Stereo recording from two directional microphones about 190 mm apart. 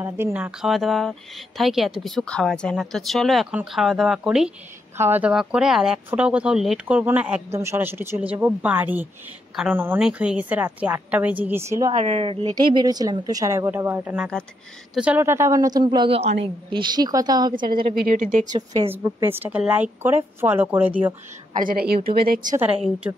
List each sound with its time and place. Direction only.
0.0 s speech: 10° right (ahead or behind)
11.9 s speech: 35° right (ahead or behind)
12.8 s a woman's voice: 20° right (ahead or behind)
18.0 s a woman's voice: 45° right (ahead or behind)
18.8 s speech: 15° right (ahead or behind)
21.5 s a woman's voice: 50° right (ahead or behind)
22.6 s speech: 5° right (ahead or behind)